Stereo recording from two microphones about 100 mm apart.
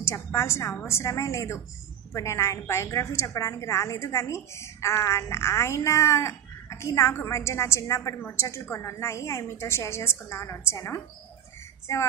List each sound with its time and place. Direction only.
0.0 s a woman's voice: 30° left (ahead or behind)